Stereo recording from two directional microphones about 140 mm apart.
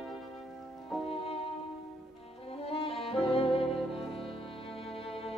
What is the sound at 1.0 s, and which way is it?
Music, 45° left (ahead or behind).